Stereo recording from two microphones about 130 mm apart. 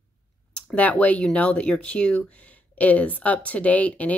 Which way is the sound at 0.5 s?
10° left (ahead or behind).